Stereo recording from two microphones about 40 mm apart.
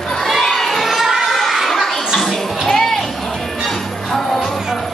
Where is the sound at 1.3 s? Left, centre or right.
Centre.